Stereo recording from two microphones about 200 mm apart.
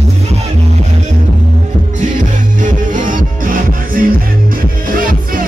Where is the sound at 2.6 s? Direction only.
40° right (ahead or behind).